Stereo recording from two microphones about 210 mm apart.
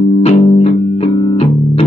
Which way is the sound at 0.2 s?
30° left (ahead or behind).